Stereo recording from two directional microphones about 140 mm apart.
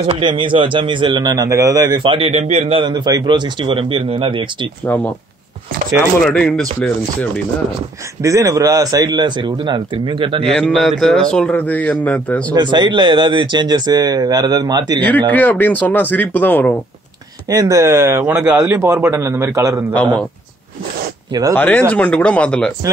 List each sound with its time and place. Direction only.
0.0 s speech: 35° right (ahead or behind)
2.0 s speech: 40° right (ahead or behind)
2.4 s a man's voice: 50° right (ahead or behind)
2.8 s speech: 35° right (ahead or behind)
4.8 s a man's voice: 10° left (ahead or behind)
6.2 s a man's voice: 5° left (ahead or behind)
8.2 s a man's voice: 20° right (ahead or behind); by 10.5 s 40° right (ahead or behind)
10.6 s a man's voice: centre (ahead or behind)
12.5 s speech: 30° right (ahead or behind)
15.0 s a man's voice: 10° left (ahead or behind)
17.5 s a man's voice: 25° right (ahead or behind)
21.3 s speech: 30° right (ahead or behind)
21.5 s a man's voice: 15° left (ahead or behind)